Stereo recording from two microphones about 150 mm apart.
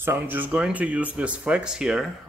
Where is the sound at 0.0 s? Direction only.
15° right (ahead or behind).